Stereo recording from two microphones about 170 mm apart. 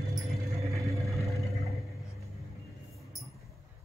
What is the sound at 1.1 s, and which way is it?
Vehicle, centre (ahead or behind).